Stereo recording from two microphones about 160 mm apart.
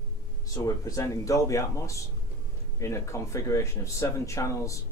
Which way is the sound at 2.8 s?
20° left (ahead or behind).